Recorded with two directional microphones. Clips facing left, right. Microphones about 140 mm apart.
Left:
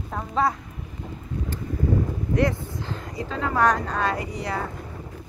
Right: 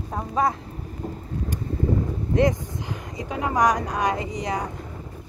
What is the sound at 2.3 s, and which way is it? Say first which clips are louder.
Speech: right 3 dB; 15° right (ahead or behind).